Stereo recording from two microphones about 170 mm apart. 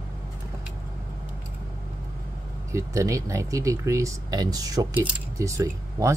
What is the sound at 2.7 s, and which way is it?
Speech, 20° right (ahead or behind).